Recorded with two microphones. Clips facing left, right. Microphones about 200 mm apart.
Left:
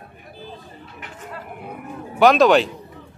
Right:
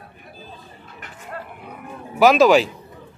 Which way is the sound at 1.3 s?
50° right (ahead or behind).